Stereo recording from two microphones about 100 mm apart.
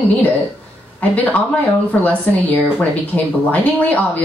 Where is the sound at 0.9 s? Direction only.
15° left (ahead or behind).